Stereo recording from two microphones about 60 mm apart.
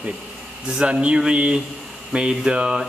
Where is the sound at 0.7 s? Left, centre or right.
Centre.